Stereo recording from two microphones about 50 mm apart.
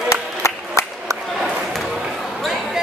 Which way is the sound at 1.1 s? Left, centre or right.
Right.